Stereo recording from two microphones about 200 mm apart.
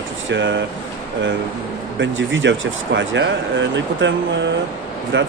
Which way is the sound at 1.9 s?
70° right (ahead or behind).